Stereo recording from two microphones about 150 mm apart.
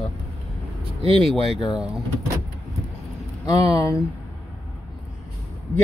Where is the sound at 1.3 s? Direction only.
Centre (ahead or behind).